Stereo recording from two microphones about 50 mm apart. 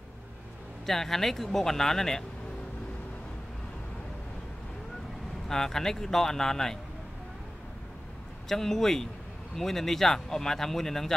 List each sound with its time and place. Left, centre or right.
0.8 s speech: centre
5.5 s speech: centre
8.5 s speech: centre